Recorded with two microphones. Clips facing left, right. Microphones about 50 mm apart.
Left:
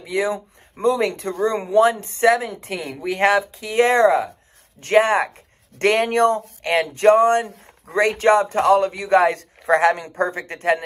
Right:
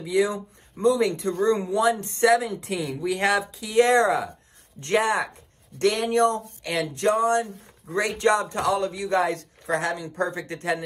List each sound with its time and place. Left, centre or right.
0.7 s a man's voice: left
6.4 s speech: left
7.0 s speech: left
8.0 s a man's voice: left
9.8 s speech: left
10.1 s a man's voice: left